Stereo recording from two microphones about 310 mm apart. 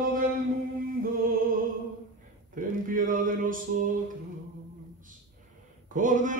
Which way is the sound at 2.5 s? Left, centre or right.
Right.